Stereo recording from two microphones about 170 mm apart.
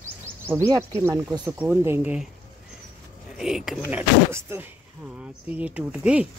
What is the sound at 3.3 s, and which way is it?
Speech, 5° right (ahead or behind).